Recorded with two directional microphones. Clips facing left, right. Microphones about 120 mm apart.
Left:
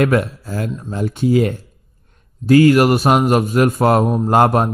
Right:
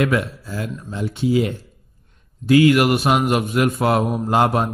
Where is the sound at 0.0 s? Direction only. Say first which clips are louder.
Left 4 dB; 45° left (ahead or behind).